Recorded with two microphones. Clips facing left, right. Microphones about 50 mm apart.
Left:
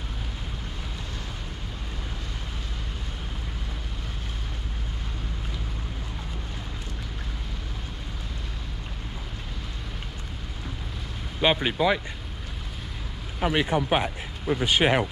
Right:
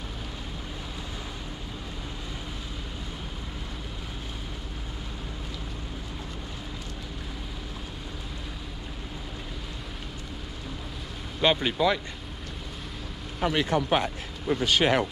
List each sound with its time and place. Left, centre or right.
11.4 s speech: centre
13.4 s speech: centre